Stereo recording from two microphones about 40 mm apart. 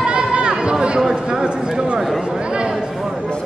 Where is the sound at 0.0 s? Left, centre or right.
Right.